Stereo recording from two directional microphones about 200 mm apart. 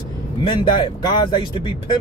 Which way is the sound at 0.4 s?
25° left (ahead or behind).